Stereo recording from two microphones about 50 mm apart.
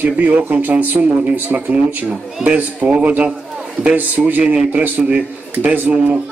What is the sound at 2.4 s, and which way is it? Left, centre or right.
A man's voice, right.